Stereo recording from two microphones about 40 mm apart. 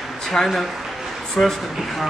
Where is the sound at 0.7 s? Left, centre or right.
Centre.